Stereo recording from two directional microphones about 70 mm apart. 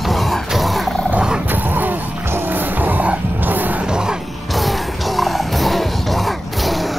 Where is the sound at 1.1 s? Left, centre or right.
Centre.